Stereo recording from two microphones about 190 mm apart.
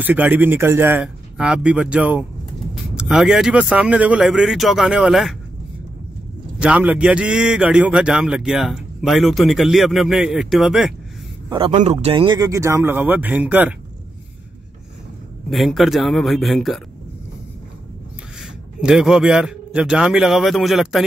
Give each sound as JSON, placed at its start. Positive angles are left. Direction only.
{"t": 0.0, "sound": "a man's voice", "side_deg": -10}
{"t": 6.6, "sound": "a man's voice", "side_deg": -5}
{"t": 11.4, "sound": "a man's voice", "side_deg": -25}
{"t": 15.5, "sound": "a man's voice", "side_deg": 0}
{"t": 18.4, "sound": "a man's voice", "side_deg": -5}